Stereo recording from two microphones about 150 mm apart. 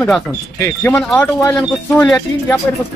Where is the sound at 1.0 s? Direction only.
5° left (ahead or behind).